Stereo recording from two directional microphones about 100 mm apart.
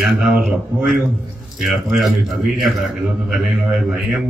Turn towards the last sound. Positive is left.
turn(degrees=-5)  # may be behind; listen again after turning